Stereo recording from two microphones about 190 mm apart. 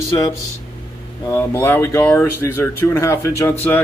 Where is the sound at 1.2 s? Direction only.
15° left (ahead or behind).